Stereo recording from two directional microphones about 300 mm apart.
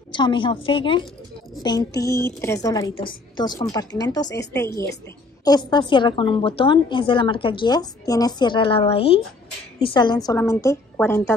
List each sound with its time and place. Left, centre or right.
0.1 s a woman's voice: centre